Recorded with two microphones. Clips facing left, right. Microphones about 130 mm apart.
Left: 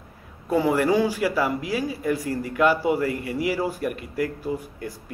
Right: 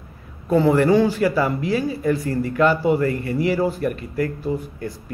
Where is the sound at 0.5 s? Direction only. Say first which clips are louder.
Right 5 dB; 10° left (ahead or behind).